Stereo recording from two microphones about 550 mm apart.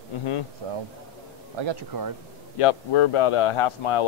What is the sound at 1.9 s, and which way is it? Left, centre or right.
Speech, right.